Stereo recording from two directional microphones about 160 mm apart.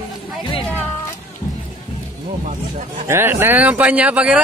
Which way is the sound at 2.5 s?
50° right (ahead or behind).